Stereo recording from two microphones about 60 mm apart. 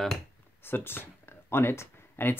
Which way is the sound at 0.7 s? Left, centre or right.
Left.